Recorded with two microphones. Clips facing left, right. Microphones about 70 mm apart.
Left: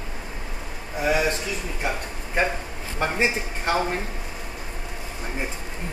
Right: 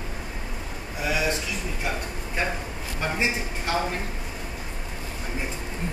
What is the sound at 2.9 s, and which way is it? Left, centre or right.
Speech, left.